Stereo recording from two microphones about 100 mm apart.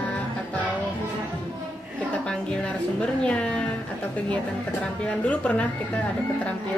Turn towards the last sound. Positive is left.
turn(degrees=15)  # may be behind; listen again after turning